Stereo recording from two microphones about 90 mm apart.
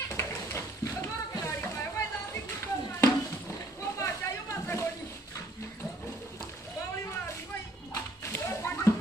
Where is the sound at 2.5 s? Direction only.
30° left (ahead or behind).